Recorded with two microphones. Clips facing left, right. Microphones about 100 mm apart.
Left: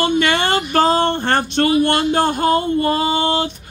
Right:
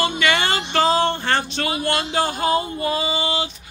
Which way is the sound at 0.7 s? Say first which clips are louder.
Left 2 dB; 45° left (ahead or behind).